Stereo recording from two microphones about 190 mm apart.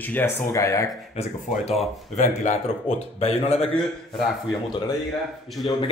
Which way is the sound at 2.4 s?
35° left (ahead or behind).